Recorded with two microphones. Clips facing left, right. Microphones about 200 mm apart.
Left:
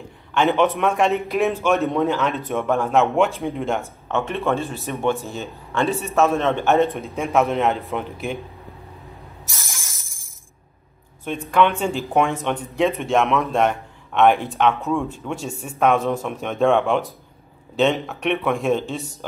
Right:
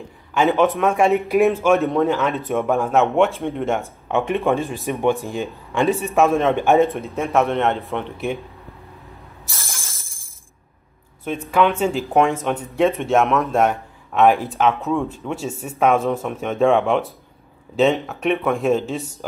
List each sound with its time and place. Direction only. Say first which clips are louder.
0.3 s speech: right 1 dB; 5° right (ahead or behind)
3.8 s speech: right 3 dB; 15° right (ahead or behind)
6.8 s speech: right 2 dB; centre (ahead or behind)
9.5 s shatter: right 2 dB; 15° left (ahead or behind)
11.2 s speech: right 1 dB; 5° right (ahead or behind)